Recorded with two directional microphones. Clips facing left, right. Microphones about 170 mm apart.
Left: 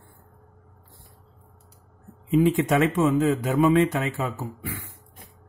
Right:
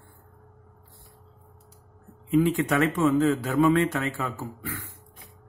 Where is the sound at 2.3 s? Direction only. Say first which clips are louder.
Left 2 dB; 20° left (ahead or behind).